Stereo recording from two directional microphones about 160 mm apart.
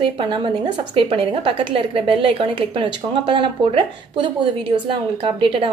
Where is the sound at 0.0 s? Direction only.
30° right (ahead or behind).